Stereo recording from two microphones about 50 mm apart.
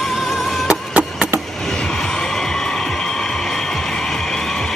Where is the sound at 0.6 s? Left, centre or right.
Centre.